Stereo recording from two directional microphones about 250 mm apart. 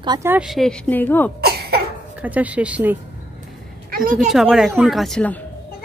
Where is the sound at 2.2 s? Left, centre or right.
Centre.